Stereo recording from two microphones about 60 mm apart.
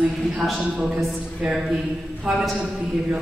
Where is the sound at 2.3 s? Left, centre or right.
Centre.